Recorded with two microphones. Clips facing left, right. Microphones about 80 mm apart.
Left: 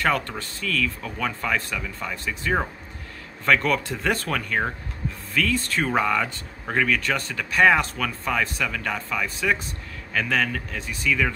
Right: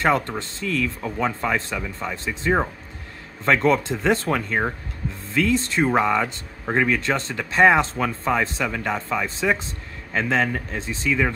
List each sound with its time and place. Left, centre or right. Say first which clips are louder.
0.0 s speech: right 3 dB; right